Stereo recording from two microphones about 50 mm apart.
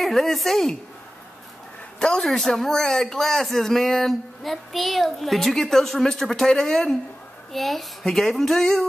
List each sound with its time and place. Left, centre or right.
0.0 s speech: centre
2.0 s a man's voice: centre
2.2 s speech: centre